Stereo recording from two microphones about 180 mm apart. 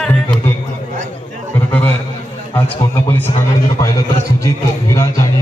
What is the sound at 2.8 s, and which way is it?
Speech, 15° left (ahead or behind).